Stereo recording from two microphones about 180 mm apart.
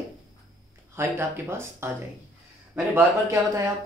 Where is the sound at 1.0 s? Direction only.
15° right (ahead or behind).